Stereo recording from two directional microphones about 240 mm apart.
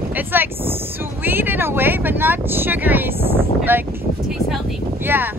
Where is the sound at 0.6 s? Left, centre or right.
Right.